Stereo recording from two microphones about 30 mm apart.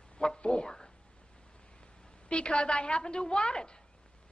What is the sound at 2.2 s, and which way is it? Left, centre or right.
A woman's voice, left.